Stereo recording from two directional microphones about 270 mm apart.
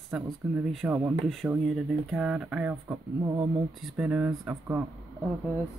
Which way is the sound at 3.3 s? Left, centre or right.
Centre.